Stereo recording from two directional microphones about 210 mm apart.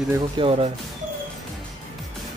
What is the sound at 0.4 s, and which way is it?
Speech, 25° right (ahead or behind).